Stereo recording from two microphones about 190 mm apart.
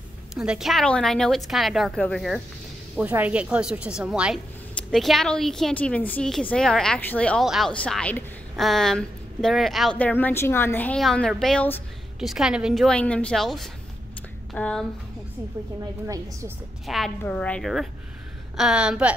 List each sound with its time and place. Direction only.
0.3 s a woman's voice: centre (ahead or behind)
16.1 s a woman's voice: 15° right (ahead or behind)
16.8 s a woman's voice: centre (ahead or behind)